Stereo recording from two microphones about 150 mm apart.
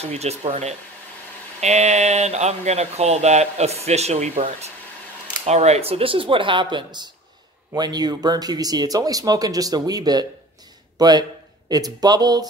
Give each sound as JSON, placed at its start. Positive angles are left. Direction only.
{"t": 0.0, "sound": "speech", "side_deg": -45}